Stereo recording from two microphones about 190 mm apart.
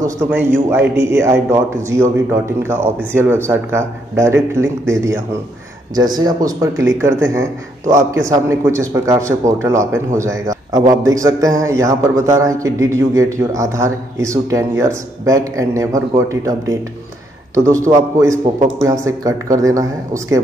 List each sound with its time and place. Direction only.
0.3 s speech: 10° right (ahead or behind)